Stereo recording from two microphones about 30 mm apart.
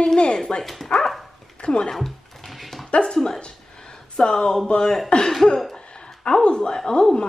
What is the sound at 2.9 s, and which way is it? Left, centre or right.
Speech, left.